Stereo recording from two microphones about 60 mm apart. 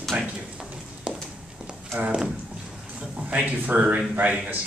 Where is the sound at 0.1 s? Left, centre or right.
Right.